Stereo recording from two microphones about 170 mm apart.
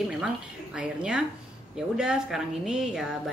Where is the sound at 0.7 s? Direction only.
5° right (ahead or behind).